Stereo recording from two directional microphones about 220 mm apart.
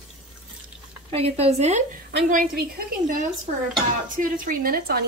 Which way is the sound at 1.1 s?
25° right (ahead or behind).